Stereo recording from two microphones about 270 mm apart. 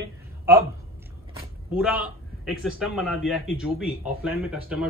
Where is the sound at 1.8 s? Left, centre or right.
Centre.